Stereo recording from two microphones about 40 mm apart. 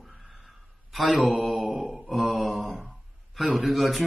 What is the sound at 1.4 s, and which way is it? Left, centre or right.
Speech, centre.